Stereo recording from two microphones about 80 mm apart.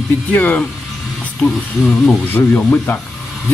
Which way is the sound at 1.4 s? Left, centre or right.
Centre.